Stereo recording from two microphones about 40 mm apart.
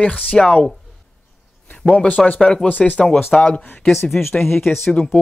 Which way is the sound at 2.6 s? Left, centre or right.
Left.